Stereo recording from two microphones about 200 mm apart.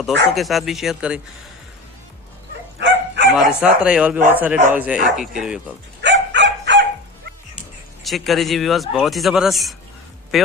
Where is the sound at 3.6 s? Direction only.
5° right (ahead or behind).